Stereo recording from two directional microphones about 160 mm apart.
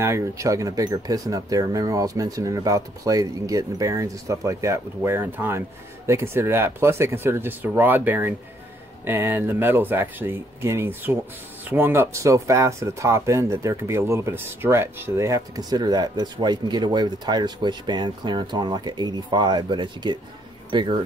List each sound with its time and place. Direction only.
0.0 s speech: 20° right (ahead or behind)